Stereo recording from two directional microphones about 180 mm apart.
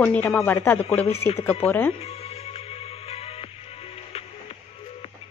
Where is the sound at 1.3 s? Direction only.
35° left (ahead or behind).